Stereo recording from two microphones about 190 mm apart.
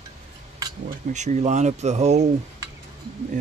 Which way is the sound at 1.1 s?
40° right (ahead or behind).